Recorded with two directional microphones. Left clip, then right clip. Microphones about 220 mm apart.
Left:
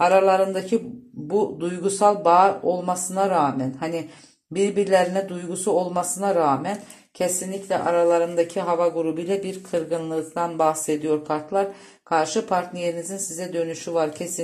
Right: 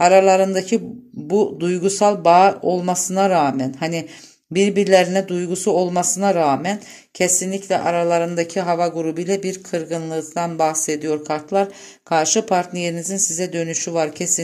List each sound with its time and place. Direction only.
0.0 s speech: 40° right (ahead or behind)